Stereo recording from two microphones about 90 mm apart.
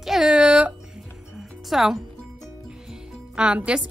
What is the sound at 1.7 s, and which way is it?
Speech, 5° right (ahead or behind).